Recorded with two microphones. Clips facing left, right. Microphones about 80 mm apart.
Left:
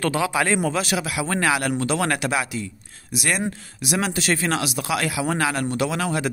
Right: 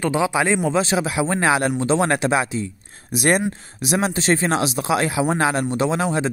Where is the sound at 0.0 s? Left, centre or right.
Centre.